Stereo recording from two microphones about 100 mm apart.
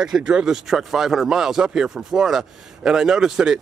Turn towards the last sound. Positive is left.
turn(degrees=-5)  # may be behind; listen again after turning